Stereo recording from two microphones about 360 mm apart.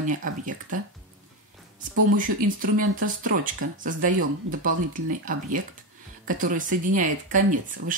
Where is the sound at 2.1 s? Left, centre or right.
Right.